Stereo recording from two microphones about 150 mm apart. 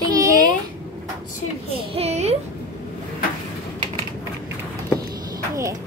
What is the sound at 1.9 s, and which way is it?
Speech, 45° right (ahead or behind).